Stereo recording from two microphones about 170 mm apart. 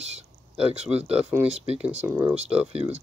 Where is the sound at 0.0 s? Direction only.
40° right (ahead or behind).